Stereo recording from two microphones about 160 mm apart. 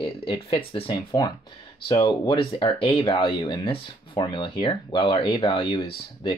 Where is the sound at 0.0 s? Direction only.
30° left (ahead or behind).